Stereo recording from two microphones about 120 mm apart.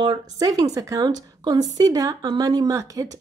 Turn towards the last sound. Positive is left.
turn(degrees=-25)  # may be behind; listen again after turning